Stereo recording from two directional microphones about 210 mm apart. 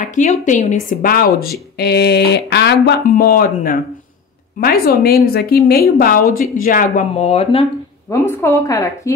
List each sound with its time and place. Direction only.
0.0 s speech: 35° left (ahead or behind)
8.1 s a woman's voice: 10° left (ahead or behind)